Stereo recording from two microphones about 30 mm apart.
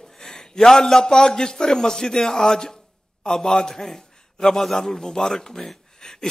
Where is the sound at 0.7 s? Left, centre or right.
Centre.